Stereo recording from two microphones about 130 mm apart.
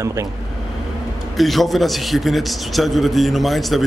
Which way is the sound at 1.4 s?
Centre (ahead or behind).